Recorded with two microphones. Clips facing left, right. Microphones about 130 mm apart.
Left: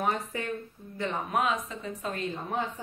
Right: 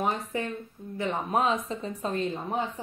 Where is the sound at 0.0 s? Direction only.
25° right (ahead or behind).